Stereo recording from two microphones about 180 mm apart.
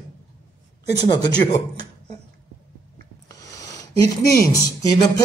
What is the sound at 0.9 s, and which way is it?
Speech, 20° left (ahead or behind).